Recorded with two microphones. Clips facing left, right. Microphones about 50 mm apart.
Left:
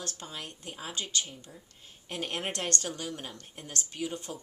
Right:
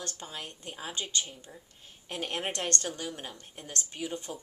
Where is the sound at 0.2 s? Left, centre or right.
Centre.